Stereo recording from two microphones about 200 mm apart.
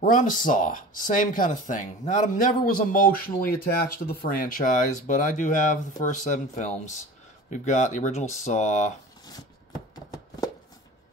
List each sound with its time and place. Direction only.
0.0 s speech: 40° left (ahead or behind)